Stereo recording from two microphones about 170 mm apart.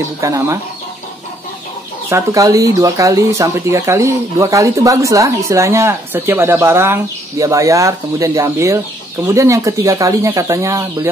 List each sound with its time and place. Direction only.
0.2 s speech: 20° right (ahead or behind)
2.0 s speech: 20° right (ahead or behind)